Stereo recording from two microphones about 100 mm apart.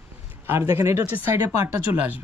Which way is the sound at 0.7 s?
25° right (ahead or behind).